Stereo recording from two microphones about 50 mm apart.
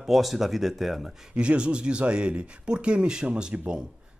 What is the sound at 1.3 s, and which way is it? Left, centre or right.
Speech, right.